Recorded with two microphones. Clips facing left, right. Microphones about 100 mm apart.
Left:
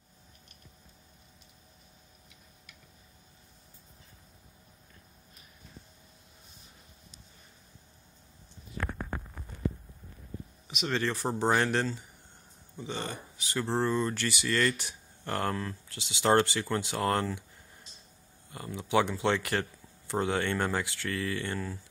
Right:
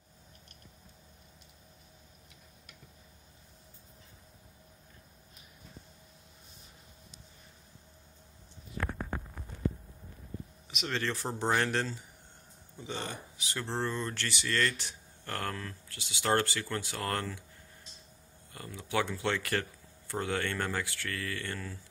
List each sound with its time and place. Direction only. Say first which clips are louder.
10.7 s speech: left 3 dB; 5° left (ahead or behind)
15.2 s speech: left 5 dB; 20° left (ahead or behind)
18.5 s speech: left 6 dB; 20° left (ahead or behind)